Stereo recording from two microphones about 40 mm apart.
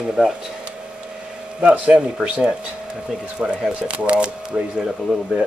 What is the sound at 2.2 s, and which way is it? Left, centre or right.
Speech, right.